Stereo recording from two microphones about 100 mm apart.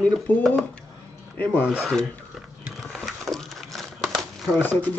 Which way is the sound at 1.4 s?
15° left (ahead or behind).